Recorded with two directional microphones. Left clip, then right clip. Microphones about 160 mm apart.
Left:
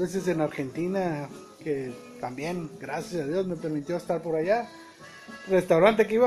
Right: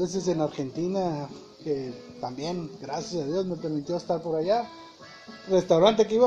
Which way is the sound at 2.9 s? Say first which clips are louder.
Even; 15° left (ahead or behind).